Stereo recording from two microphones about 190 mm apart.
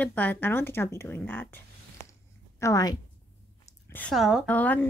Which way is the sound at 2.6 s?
20° left (ahead or behind).